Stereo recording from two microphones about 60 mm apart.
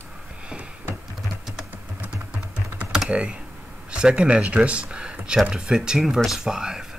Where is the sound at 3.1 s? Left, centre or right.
Centre.